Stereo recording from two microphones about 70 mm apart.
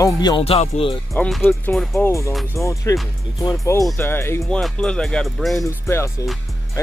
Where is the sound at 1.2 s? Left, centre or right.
Left.